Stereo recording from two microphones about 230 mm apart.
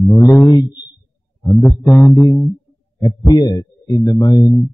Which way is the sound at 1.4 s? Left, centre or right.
Centre.